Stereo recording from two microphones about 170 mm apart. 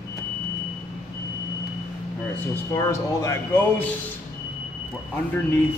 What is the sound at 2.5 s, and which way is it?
Speech, 15° left (ahead or behind).